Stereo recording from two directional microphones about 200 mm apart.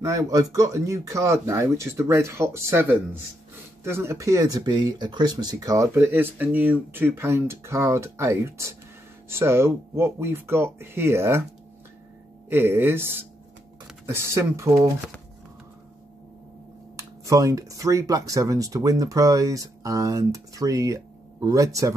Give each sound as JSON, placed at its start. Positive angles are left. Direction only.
{"t": 0.0, "sound": "speech", "side_deg": -15}
{"t": 12.4, "sound": "speech", "side_deg": -10}
{"t": 16.9, "sound": "speech", "side_deg": -15}